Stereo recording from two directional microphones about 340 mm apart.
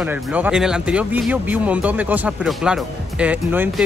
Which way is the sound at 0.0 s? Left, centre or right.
Centre.